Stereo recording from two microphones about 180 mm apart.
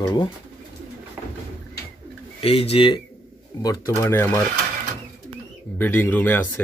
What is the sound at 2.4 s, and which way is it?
Speech, 35° left (ahead or behind).